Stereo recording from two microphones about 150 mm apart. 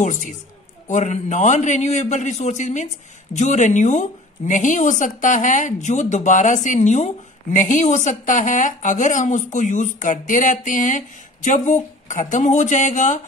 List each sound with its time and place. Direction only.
0.0 s a man's voice: 55° left (ahead or behind)